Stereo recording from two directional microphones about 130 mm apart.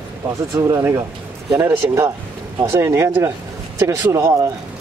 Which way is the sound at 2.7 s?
20° right (ahead or behind).